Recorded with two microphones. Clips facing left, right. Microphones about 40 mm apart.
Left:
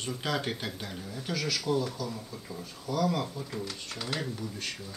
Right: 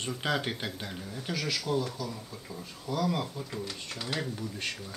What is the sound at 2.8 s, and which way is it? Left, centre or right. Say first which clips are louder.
Speech: left 1 dB; centre.